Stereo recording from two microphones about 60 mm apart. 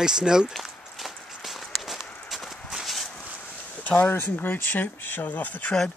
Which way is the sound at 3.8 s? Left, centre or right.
Left.